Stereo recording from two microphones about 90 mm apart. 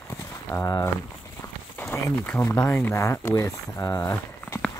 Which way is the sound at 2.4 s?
30° left (ahead or behind).